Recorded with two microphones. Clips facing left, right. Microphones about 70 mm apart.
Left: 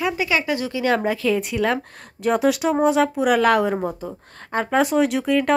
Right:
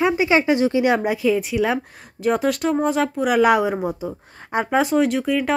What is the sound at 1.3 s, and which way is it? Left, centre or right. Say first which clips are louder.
Speech: right 1 dB; centre.